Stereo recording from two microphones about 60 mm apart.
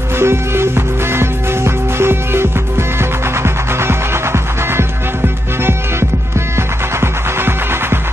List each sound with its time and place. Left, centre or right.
0.2 s music: right
3.4 s music: right